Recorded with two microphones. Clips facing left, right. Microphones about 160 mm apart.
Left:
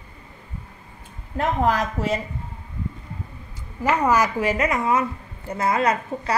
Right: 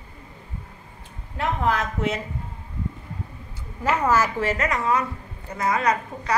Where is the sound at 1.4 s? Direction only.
40° left (ahead or behind).